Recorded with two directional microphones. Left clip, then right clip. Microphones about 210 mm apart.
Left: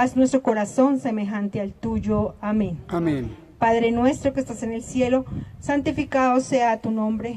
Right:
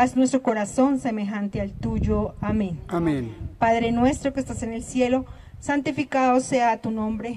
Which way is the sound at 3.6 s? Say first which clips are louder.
Left 1 dB; 25° right (ahead or behind).